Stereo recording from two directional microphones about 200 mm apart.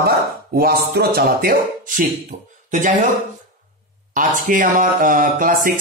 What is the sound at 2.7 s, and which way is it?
Speech, 40° right (ahead or behind).